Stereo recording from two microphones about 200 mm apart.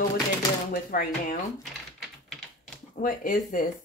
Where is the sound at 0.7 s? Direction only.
45° left (ahead or behind).